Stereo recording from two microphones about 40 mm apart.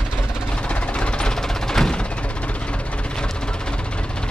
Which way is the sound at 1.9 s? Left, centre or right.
Left.